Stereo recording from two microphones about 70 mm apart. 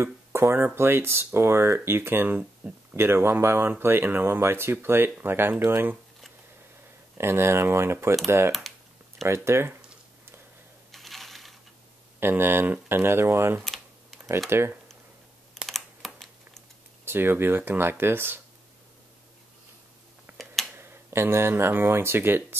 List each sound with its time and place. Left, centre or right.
0.0 s speech: right
3.0 s speech: right
7.2 s speech: right
8.5 s speech: centre
9.2 s speech: right
10.9 s coin: centre
12.2 s speech: right
15.5 s computer keyboard: centre
17.0 s speech: right
20.3 s a sound: right
20.7 s speech: right